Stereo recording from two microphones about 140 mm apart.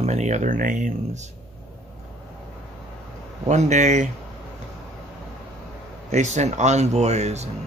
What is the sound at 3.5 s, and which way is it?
Speech, 60° right (ahead or behind).